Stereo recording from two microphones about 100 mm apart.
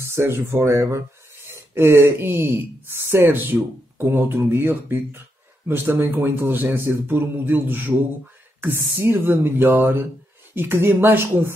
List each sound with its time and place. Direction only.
0.1 s speech: 25° right (ahead or behind)